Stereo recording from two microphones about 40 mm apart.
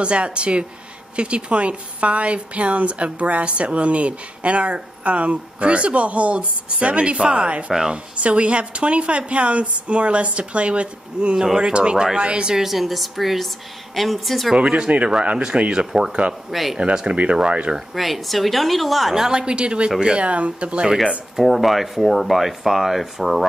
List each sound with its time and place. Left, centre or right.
0.0 s a woman's voice: right
12.5 s speech: centre
14.5 s speech: right
16.5 s speech: centre
17.1 s speech: right
17.7 s speech: centre
19.2 s speech: right
21.4 s speech: centre